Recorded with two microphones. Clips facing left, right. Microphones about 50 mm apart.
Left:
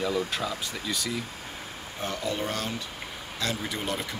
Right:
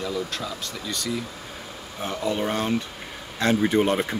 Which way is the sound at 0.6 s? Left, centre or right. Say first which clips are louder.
Right 1 dB; centre.